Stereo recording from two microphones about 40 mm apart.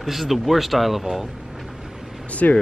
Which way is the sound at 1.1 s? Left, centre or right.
Centre.